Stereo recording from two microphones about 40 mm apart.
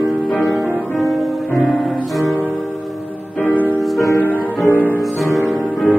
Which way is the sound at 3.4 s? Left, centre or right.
Left.